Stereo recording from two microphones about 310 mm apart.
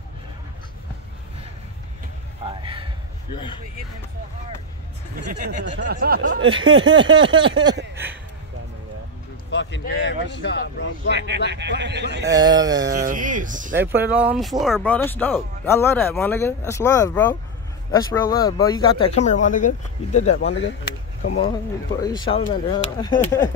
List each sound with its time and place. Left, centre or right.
2.4 s a sound: centre
5.1 s speech: right
6.5 s a sound: centre
7.9 s speech: centre
9.5 s speech: left
11.1 s speech: right
12.3 s a sound: centre
12.9 s speech: right
13.7 s speech: centre; by 20.4 s left
20.4 s speech: left
22.0 s speech: centre